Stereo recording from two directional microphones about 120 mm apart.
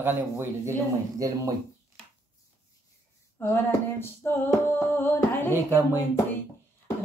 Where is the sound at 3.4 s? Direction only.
20° left (ahead or behind).